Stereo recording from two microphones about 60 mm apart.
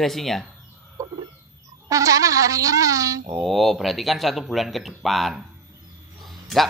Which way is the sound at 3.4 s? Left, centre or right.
Centre.